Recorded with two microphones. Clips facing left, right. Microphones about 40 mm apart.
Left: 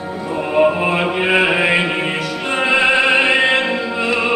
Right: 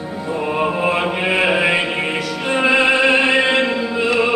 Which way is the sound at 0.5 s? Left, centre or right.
Centre.